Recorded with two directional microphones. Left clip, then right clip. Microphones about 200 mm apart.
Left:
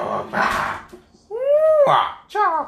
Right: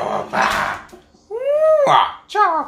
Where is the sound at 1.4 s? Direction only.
20° right (ahead or behind).